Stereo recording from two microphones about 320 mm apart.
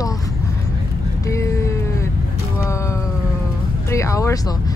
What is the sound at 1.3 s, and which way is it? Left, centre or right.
Speech, centre.